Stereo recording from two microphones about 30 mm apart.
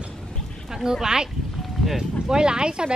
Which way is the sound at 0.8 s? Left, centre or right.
Centre.